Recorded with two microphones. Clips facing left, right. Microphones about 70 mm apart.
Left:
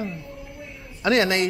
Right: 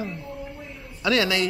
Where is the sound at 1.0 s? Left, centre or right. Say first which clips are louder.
Left 2 dB; left.